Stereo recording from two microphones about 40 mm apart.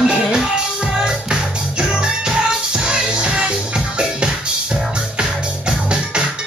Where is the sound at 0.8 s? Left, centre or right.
Centre.